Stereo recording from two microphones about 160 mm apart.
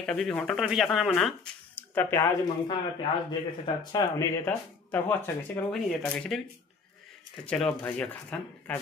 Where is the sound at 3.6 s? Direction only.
25° left (ahead or behind).